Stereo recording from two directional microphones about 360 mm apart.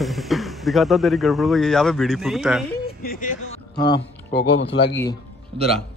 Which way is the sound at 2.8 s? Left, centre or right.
Left.